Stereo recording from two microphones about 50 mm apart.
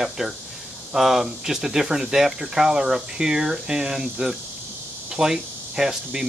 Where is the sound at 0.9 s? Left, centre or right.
Centre.